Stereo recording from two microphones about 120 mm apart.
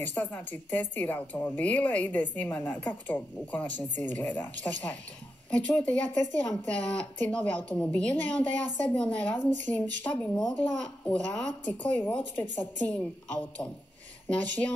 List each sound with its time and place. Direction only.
0.1 s a woman's voice: 15° left (ahead or behind)